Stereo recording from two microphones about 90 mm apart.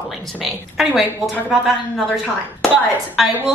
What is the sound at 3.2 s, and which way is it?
Speech, centre (ahead or behind).